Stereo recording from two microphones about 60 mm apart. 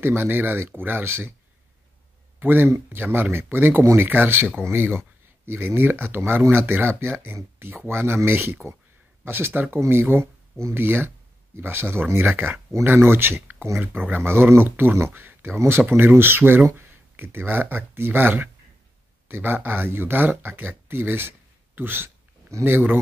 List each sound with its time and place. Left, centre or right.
0.0 s speech: right
2.4 s speech: right